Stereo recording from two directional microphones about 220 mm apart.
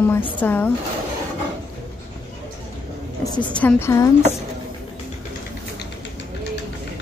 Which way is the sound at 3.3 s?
5° left (ahead or behind).